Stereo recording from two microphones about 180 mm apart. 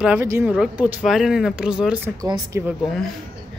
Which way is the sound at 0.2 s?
10° right (ahead or behind).